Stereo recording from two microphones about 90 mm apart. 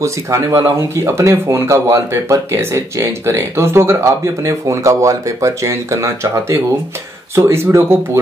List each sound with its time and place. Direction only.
0.0 s speech: 35° right (ahead or behind)